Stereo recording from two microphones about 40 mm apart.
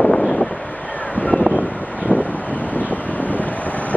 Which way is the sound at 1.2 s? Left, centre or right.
Left.